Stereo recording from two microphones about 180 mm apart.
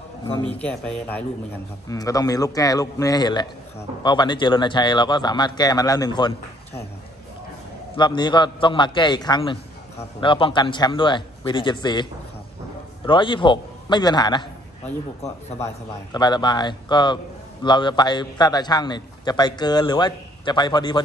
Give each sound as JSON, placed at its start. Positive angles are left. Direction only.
{"t": 0.6, "sound": "speech", "side_deg": 5}
{"t": 1.9, "sound": "a man's voice", "side_deg": 20}
{"t": 7.9, "sound": "a man's voice", "side_deg": 25}
{"t": 15.6, "sound": "a man's voice", "side_deg": 25}